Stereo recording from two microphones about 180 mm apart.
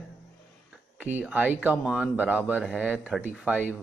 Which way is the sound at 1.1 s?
10° right (ahead or behind).